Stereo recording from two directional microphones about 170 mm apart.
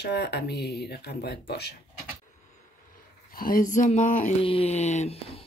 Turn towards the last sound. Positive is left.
turn(degrees=40)  # may be behind; listen again after turning